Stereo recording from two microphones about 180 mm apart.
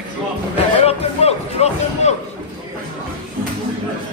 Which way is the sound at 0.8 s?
35° left (ahead or behind).